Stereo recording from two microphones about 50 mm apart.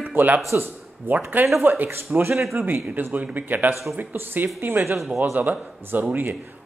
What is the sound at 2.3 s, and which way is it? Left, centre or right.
Speech, centre.